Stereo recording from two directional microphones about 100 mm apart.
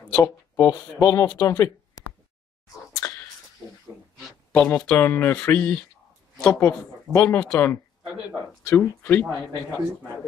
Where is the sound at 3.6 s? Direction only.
15° right (ahead or behind).